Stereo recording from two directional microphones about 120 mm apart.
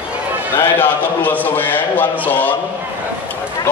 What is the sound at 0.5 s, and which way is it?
A man's voice, 15° left (ahead or behind).